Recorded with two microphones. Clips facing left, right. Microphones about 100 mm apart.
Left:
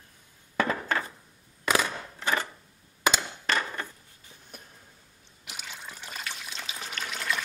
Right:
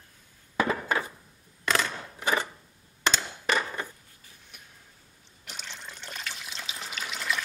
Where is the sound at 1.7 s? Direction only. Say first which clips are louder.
Left 1 dB; 10° left (ahead or behind).